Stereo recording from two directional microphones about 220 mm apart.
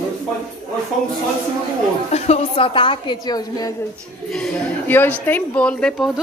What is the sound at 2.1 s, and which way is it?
A woman's voice, 30° left (ahead or behind).